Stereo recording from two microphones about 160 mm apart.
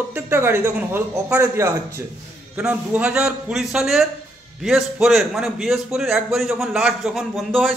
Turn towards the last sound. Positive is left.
turn(degrees=0)  # may be behind; listen again after turning